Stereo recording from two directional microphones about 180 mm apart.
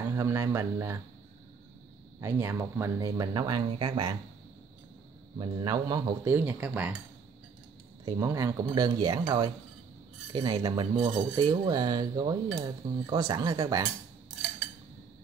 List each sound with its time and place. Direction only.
0.0 s speech: 15° right (ahead or behind)
2.1 s cutlery: 15° right (ahead or behind)
5.4 s speech: 20° right (ahead or behind)
8.0 s speech: 15° right (ahead or behind)
8.6 s cutlery: 20° right (ahead or behind)